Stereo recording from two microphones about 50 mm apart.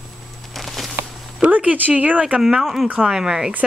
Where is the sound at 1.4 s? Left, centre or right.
Right.